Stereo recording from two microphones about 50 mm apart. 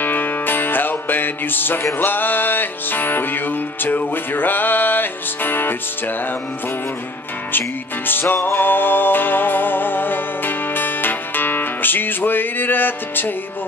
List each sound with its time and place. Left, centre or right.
0.0 s music: left
8.1 s music: left
8.4 s music: left
8.6 s music: left